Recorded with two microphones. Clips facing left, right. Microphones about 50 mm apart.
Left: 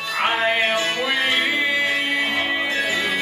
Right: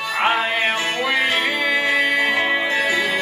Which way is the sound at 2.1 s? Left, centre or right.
Centre.